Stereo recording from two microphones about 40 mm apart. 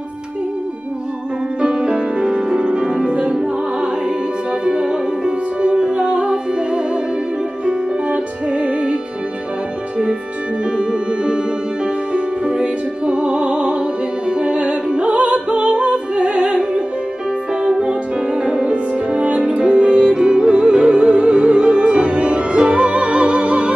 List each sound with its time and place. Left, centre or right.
1.6 s music: right
10.6 s music: right